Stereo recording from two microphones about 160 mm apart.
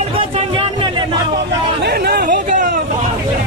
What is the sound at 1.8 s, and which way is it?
Chatter, 80° right.